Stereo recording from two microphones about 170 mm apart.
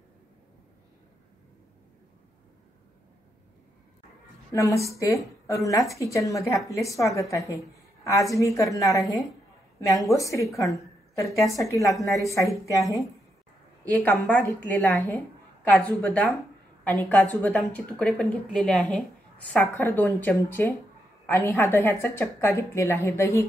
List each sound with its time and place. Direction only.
4.5 s a woman's voice: 20° left (ahead or behind)
9.0 s a woman's voice: centre (ahead or behind)
9.8 s a woman's voice: 20° left (ahead or behind)
13.8 s a woman's voice: 10° left (ahead or behind)